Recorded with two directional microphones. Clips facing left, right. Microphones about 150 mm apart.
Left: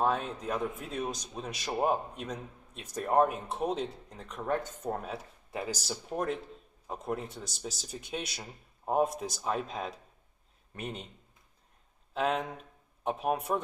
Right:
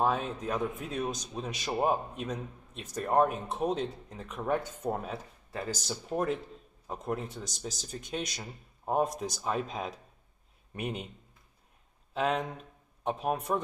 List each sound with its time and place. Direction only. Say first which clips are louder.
0.0 s a man's voice: right 1 dB; 5° right (ahead or behind)
5.5 s a man's voice: even; 15° left (ahead or behind); by 11.1 s 10° right (ahead or behind)
12.1 s speech: even; centre (ahead or behind)